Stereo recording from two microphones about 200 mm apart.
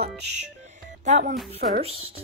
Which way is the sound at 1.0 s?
35° right (ahead or behind).